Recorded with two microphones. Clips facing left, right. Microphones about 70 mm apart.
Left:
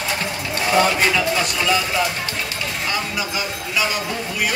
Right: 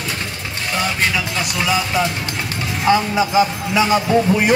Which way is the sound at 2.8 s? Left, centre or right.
Right.